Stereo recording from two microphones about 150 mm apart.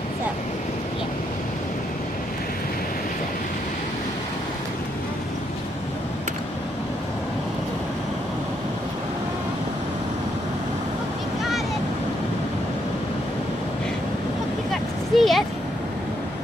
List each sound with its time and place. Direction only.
14.7 s vehicle: centre (ahead or behind)